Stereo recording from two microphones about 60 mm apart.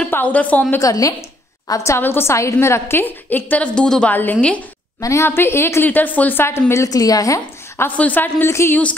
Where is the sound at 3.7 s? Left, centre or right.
Centre.